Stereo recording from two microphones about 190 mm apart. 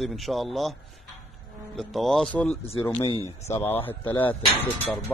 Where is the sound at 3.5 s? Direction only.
10° left (ahead or behind).